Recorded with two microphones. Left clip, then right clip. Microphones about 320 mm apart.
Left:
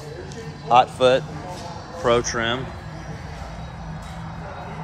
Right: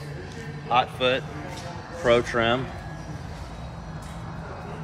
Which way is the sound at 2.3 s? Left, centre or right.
Centre.